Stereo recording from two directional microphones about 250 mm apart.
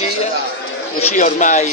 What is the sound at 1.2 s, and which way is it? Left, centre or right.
Speech, left.